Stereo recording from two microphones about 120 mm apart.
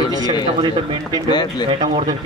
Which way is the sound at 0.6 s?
45° right (ahead or behind).